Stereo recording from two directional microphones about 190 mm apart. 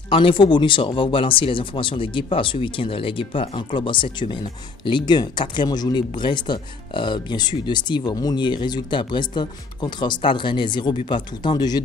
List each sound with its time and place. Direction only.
0.1 s speech: 25° left (ahead or behind)